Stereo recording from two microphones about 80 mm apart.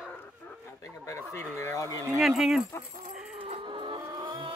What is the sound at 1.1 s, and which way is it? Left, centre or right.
Speech, left.